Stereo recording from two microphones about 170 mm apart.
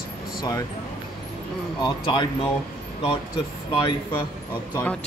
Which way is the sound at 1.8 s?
25° left (ahead or behind).